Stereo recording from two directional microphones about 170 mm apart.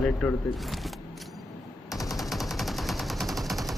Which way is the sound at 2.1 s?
Centre (ahead or behind).